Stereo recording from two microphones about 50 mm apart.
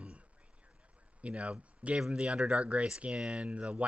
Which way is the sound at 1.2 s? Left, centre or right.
Right.